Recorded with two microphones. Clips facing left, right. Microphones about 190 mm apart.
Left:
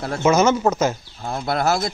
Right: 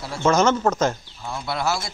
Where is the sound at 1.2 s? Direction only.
55° left (ahead or behind).